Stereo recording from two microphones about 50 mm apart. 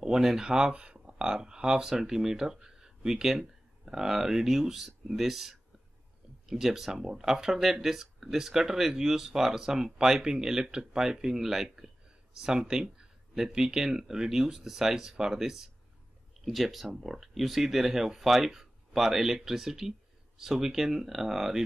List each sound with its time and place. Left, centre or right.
0.0 s speech: centre